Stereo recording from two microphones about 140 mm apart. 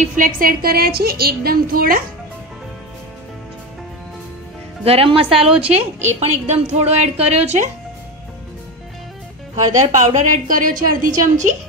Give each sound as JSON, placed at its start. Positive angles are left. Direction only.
{"t": 0.0, "sound": "a woman's voice", "side_deg": -70}
{"t": 4.8, "sound": "a woman's voice", "side_deg": -40}
{"t": 5.7, "sound": "a woman's voice", "side_deg": -15}
{"t": 6.1, "sound": "a woman's voice", "side_deg": -50}
{"t": 9.9, "sound": "a woman's voice", "side_deg": -60}